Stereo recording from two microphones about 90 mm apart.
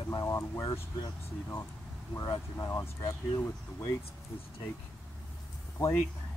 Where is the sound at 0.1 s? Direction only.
35° left (ahead or behind).